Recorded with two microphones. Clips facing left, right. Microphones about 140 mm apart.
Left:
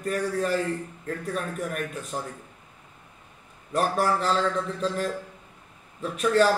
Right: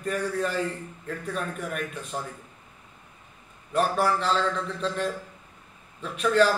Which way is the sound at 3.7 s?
40° left (ahead or behind).